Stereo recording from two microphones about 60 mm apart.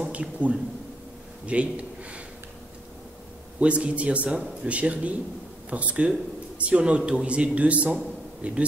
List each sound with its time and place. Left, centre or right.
0.0 s a man's voice: right
3.5 s a man's voice: right